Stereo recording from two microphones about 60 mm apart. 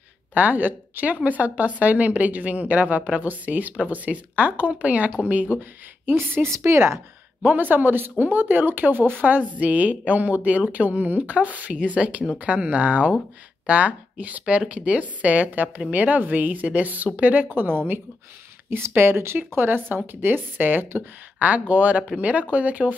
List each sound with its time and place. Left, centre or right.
0.3 s a woman's voice: right
6.5 s a woman's voice: right
7.4 s a woman's voice: right
21.4 s a woman's voice: right